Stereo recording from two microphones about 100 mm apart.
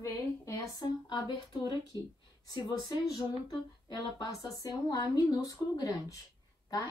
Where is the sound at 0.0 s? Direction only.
35° left (ahead or behind).